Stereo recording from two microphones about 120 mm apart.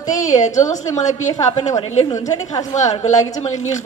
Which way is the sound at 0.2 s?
90° left.